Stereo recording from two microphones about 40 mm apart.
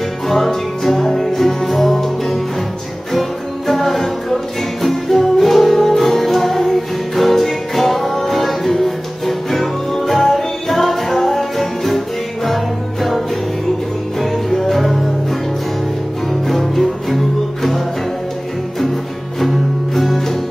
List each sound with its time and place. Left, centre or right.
0.3 s music: centre
14.5 s music: centre
16.4 s music: centre
19.4 s music: centre